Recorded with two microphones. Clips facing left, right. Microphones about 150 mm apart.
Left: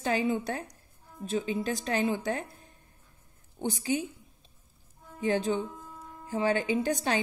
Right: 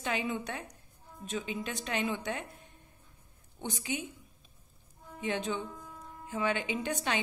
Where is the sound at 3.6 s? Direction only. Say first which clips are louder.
Left 7 dB; 35° left (ahead or behind).